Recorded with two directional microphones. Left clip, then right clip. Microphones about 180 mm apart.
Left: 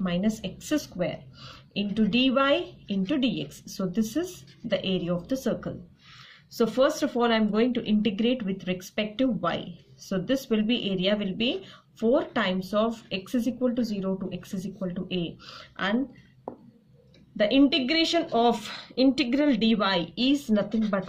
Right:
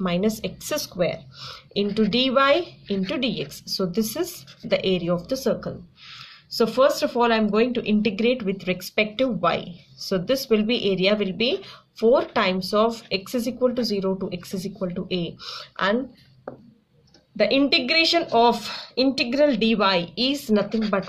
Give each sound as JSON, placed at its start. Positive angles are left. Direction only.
{"t": 0.0, "sound": "speech", "side_deg": -40}
{"t": 17.4, "sound": "speech", "side_deg": -25}